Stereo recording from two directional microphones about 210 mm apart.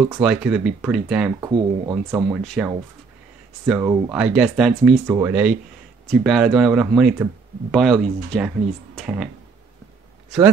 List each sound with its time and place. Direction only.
0.2 s speech: 5° right (ahead or behind)
1.5 s speech: 15° right (ahead or behind)
2.4 s speech: centre (ahead or behind)